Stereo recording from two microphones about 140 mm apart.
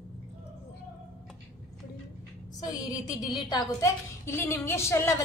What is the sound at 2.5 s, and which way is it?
A woman's voice, 30° left (ahead or behind).